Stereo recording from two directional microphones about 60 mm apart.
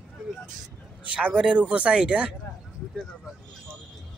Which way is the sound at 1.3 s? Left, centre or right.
Centre.